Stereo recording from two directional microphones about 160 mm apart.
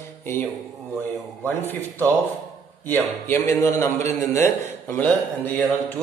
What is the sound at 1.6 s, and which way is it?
A man's voice, 10° left (ahead or behind).